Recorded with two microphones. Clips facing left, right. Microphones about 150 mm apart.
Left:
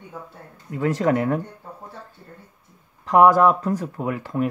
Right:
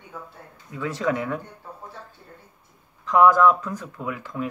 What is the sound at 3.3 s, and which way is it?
Speech, 45° left (ahead or behind).